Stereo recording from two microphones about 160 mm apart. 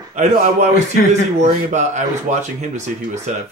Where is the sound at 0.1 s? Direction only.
50° right (ahead or behind).